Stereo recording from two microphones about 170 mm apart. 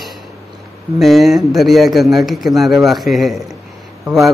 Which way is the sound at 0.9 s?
Centre (ahead or behind).